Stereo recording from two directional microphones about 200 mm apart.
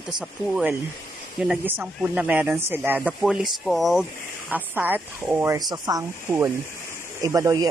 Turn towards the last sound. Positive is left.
turn(degrees=-20)  # may be behind; listen again after turning